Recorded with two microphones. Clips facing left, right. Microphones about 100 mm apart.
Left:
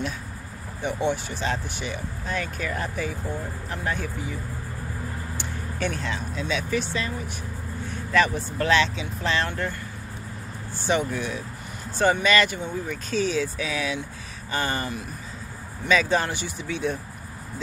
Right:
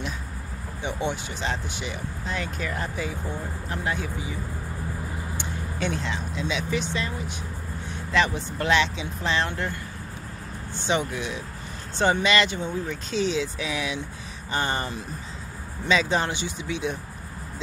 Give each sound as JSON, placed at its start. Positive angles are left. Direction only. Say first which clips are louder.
{"t": 0.8, "sound": "speech", "louder": "left 3 dB", "side_deg": -20}
{"t": 5.4, "sound": "speech", "louder": "left 1 dB", "side_deg": -20}
{"t": 10.9, "sound": "speech", "louder": "left 2 dB", "side_deg": -20}